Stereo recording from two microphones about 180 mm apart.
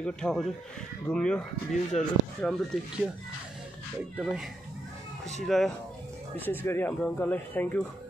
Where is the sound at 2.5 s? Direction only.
5° left (ahead or behind).